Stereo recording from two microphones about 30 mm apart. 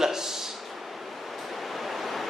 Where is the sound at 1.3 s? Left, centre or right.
Centre.